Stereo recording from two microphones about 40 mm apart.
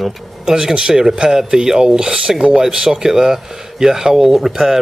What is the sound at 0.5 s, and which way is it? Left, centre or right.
A man's voice, centre.